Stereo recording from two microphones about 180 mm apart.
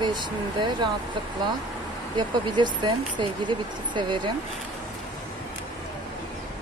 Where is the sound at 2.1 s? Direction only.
25° right (ahead or behind).